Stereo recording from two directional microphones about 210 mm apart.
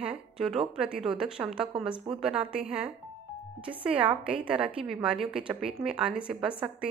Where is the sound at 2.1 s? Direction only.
25° right (ahead or behind).